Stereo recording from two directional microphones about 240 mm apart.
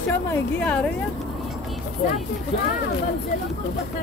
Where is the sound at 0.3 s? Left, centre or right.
Centre.